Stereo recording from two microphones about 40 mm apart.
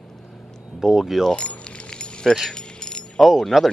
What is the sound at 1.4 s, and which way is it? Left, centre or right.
Speech, left.